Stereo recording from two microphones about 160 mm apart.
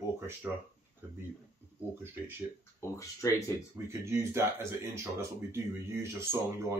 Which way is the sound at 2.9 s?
20° left (ahead or behind).